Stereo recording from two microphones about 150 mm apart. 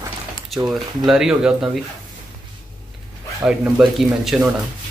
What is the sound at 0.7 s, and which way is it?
Speech, 5° right (ahead or behind).